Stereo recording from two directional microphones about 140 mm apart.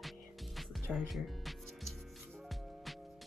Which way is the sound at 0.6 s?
Centre (ahead or behind).